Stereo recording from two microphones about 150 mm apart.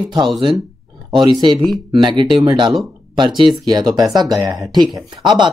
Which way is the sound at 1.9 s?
30° right (ahead or behind).